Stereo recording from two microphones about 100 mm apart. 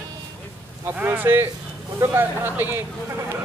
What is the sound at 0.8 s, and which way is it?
Speech, 20° right (ahead or behind).